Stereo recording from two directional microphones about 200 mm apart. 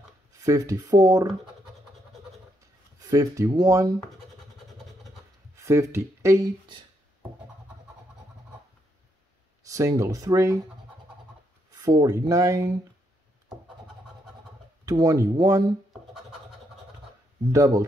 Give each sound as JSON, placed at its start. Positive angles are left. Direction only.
{"t": 0.3, "sound": "speech", "side_deg": -15}
{"t": 3.0, "sound": "speech", "side_deg": -15}
{"t": 5.6, "sound": "speech", "side_deg": -15}
{"t": 9.7, "sound": "speech", "side_deg": -15}
{"t": 11.7, "sound": "speech", "side_deg": -20}
{"t": 14.9, "sound": "speech", "side_deg": -20}
{"t": 17.5, "sound": "speech", "side_deg": -15}